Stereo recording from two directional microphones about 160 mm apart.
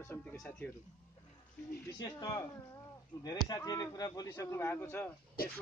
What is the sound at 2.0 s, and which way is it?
Speech, 25° left (ahead or behind).